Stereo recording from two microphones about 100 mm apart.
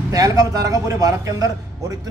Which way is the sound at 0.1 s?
35° right (ahead or behind).